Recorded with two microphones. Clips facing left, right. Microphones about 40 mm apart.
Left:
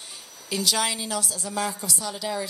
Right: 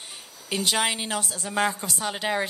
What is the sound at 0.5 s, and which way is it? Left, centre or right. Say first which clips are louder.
A woman's voice: right 1 dB; right.